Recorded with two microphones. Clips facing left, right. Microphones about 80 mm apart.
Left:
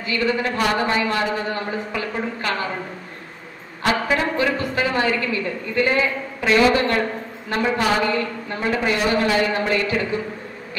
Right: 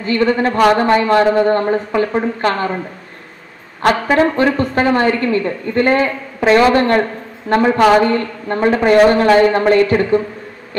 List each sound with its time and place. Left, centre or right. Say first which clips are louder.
0.0 s a woman's voice: right 7 dB; right
3.8 s a woman's voice: right 8 dB; right